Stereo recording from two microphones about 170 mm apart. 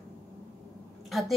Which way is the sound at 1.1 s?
Centre (ahead or behind).